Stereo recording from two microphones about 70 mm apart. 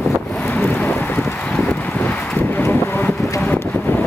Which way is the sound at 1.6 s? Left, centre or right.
Left.